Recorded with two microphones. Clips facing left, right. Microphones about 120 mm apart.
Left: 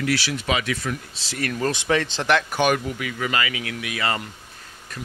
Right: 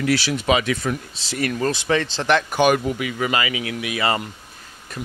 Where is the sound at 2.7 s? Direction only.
20° right (ahead or behind).